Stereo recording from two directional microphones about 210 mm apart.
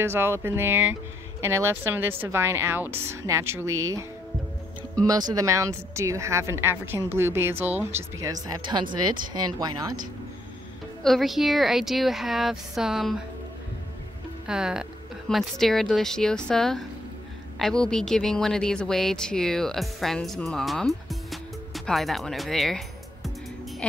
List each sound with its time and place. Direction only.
0.0 s speech: 10° right (ahead or behind)
5.0 s speech: 15° right (ahead or behind)
8.5 s speech: 20° right (ahead or behind)
11.0 s speech: centre (ahead or behind)
14.5 s a woman's voice: 5° right (ahead or behind)